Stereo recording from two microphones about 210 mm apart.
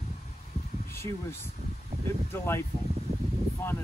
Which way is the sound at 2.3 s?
10° left (ahead or behind).